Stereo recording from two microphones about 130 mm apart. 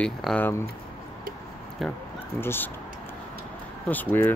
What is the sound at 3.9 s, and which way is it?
Speech, 15° left (ahead or behind).